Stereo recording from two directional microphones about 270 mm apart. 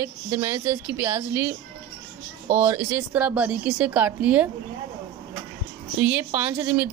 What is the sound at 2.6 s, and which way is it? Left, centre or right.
Speech, centre.